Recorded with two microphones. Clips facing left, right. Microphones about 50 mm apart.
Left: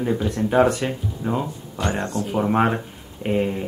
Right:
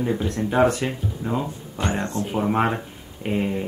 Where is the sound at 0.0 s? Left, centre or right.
Centre.